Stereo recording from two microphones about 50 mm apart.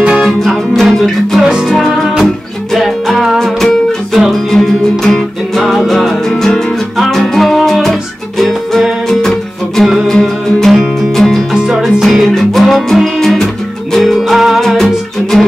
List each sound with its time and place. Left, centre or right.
0.0 s music: centre
0.3 s music: centre